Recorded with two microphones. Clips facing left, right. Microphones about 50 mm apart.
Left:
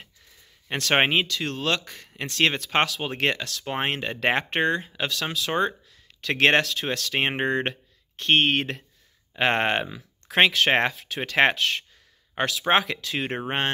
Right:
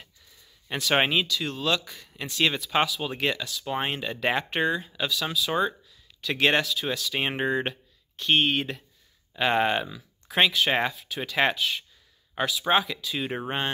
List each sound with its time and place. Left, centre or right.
0.9 s speech: left
3.0 s speech: left
3.6 s speech: left
7.2 s speech: left
10.5 s speech: left